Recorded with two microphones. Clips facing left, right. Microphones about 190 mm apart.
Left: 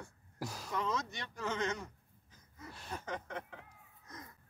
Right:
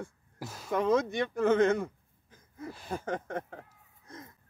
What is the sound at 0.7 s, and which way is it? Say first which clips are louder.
Speech: right 12 dB; 55° right (ahead or behind).